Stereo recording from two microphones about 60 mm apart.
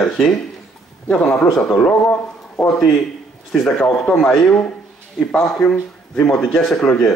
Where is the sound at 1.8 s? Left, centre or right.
Centre.